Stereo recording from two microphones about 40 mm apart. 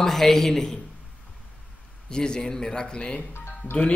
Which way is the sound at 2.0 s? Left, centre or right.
Centre.